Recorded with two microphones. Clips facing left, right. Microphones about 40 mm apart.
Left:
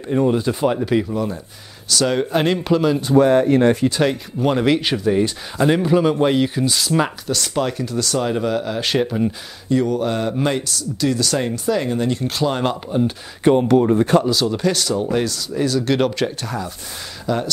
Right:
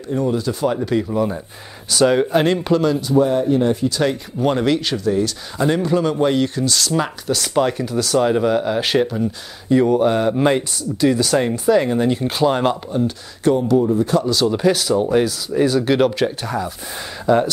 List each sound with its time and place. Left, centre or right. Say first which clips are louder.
0.1 s speech: left 2 dB; left
0.7 s speech: left 1 dB; centre
1.1 s speech: right 3 dB; centre
3.2 s speech: left 3 dB; left
4.0 s speech: even; centre
4.7 s speech: left 1 dB; centre
7.2 s speech: right 3 dB; centre
12.9 s speech: left 1 dB; left
13.6 s speech: left 1 dB; left
14.3 s speech: right 3 dB; centre
17.3 s speech: right 6 dB; centre